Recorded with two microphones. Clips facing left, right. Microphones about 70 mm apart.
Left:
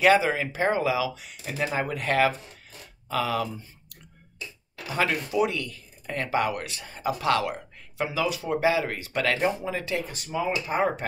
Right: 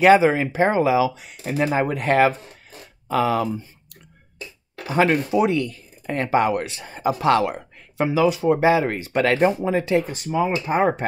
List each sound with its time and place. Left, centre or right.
0.0 s speech: right
4.7 s speech: right